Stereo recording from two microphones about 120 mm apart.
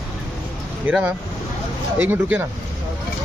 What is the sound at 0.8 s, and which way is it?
Speech, 10° right (ahead or behind).